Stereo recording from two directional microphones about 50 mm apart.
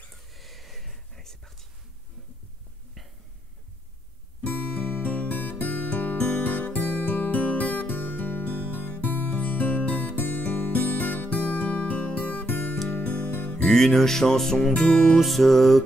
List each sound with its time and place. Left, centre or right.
0.1 s whispering: centre
4.6 s music: left
13.7 s music: centre